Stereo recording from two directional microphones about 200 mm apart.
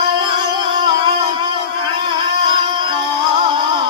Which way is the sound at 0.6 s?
25° right (ahead or behind).